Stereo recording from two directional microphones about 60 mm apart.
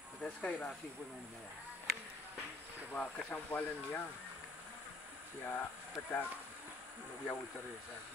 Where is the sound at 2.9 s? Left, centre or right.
Left.